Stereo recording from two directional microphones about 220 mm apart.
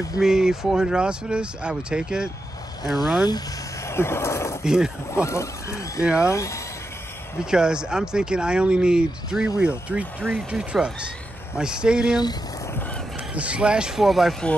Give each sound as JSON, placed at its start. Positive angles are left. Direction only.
{"t": 0.2, "sound": "speech", "side_deg": -5}
{"t": 3.3, "sound": "speech", "side_deg": 15}
{"t": 4.6, "sound": "speech", "side_deg": -5}
{"t": 5.1, "sound": "speech", "side_deg": 15}
{"t": 7.5, "sound": "speech", "side_deg": -5}
{"t": 12.2, "sound": "a sound", "side_deg": 20}
{"t": 13.3, "sound": "speech", "side_deg": -5}